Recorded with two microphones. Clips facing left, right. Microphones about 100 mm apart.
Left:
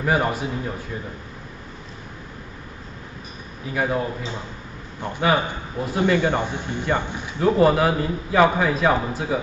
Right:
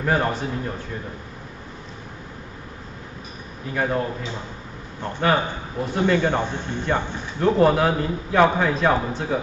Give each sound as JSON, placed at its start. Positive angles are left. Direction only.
{"t": 0.0, "sound": "a man's voice", "side_deg": 10}
{"t": 3.7, "sound": "a man's voice", "side_deg": 5}